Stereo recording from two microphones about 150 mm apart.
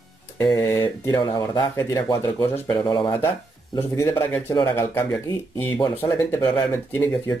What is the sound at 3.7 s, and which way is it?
Speech, 20° left (ahead or behind).